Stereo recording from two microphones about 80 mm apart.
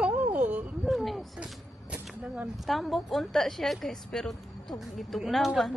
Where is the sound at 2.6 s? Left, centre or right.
Centre.